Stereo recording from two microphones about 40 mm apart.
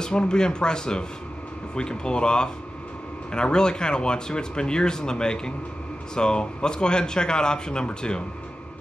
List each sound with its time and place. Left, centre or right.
0.3 s speech: left